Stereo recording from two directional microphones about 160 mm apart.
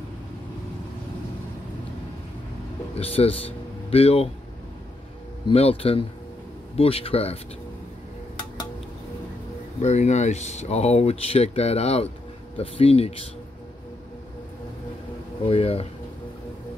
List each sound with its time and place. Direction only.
2.9 s speech: 40° left (ahead or behind)
5.5 s speech: 40° left (ahead or behind)
9.8 s speech: 45° left (ahead or behind)
15.4 s speech: 35° left (ahead or behind)